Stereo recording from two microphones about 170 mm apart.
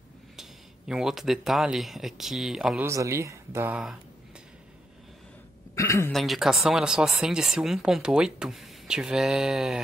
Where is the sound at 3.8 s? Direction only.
5° right (ahead or behind).